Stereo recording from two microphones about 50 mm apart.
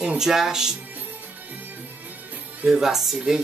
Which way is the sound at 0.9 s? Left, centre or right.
Right.